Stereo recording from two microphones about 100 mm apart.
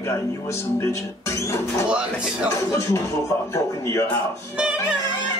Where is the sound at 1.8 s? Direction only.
10° right (ahead or behind).